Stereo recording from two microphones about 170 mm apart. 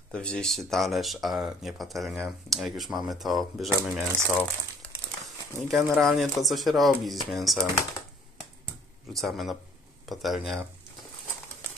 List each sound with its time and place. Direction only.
0.1 s speech: 5° left (ahead or behind)
5.7 s speech: centre (ahead or behind)
9.1 s speech: centre (ahead or behind)